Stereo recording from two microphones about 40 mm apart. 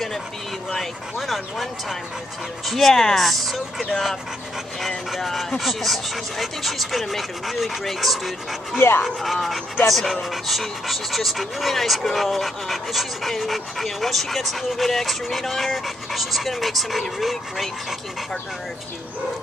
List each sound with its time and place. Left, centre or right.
1.1 s speech: centre
4.8 s speech: centre
8.7 s speech: left
9.0 s speech: centre